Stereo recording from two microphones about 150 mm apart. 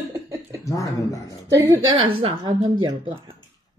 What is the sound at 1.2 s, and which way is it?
Speech, 20° right (ahead or behind).